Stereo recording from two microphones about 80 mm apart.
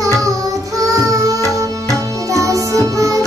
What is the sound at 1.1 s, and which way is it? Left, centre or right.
Music, right.